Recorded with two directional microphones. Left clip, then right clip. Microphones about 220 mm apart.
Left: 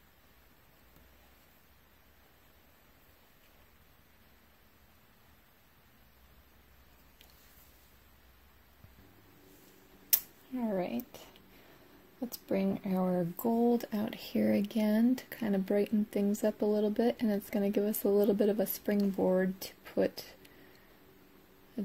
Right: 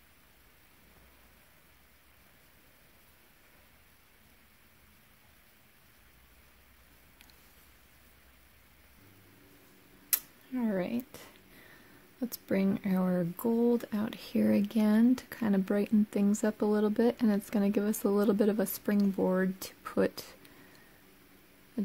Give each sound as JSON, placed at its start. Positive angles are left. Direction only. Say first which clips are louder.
{"t": 10.0, "sound": "tick-tock", "louder": "left 1 dB", "side_deg": -25}
{"t": 10.6, "sound": "a sound", "louder": "right 1 dB", "side_deg": -40}
{"t": 12.3, "sound": "speech", "louder": "right 1 dB", "side_deg": -40}
{"t": 13.1, "sound": "mantra", "louder": "right 2 dB", "side_deg": -45}
{"t": 13.6, "sound": "speech", "louder": "right 1 dB", "side_deg": -25}